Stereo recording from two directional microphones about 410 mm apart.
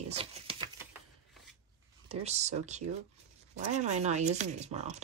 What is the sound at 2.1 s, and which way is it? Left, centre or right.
Speech, centre.